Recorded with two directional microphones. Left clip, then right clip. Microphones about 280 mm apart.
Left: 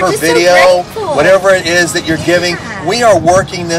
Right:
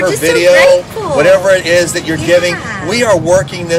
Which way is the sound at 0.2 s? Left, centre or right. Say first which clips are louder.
Even; centre.